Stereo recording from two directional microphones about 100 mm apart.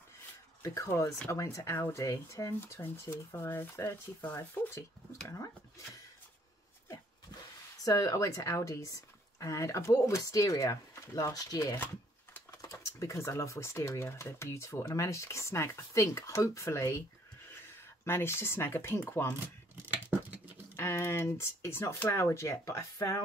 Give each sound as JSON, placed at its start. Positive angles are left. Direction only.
{"t": 0.6, "sound": "speech", "side_deg": 30}
{"t": 7.8, "sound": "speech", "side_deg": 35}
{"t": 18.0, "sound": "speech", "side_deg": 25}
{"t": 19.4, "sound": "a sound", "side_deg": -15}
{"t": 20.7, "sound": "speech", "side_deg": 25}